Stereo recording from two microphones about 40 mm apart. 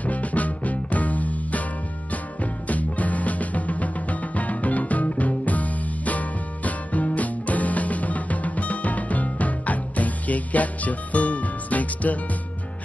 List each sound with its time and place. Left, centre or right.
0.0 s music: left